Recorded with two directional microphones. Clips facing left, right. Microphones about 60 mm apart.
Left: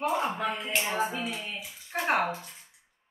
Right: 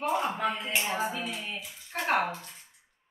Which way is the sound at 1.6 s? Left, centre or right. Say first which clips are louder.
Left 2 dB; centre.